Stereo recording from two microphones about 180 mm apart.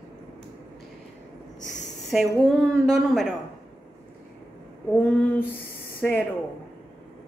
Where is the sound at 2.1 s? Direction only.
5° right (ahead or behind).